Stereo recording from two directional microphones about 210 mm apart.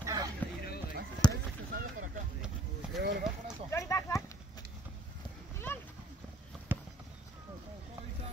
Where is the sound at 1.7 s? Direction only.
45° right (ahead or behind).